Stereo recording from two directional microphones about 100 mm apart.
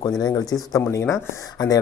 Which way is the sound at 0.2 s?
40° left (ahead or behind).